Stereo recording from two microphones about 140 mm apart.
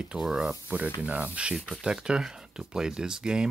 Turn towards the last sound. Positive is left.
turn(degrees=-5)  # may be behind; listen again after turning